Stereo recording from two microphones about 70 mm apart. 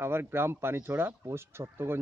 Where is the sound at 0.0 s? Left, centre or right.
Right.